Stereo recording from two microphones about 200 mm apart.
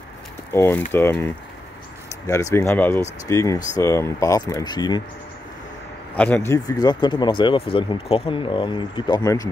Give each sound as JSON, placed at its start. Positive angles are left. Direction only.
{"t": 0.5, "sound": "speech", "side_deg": 10}
{"t": 6.1, "sound": "speech", "side_deg": 10}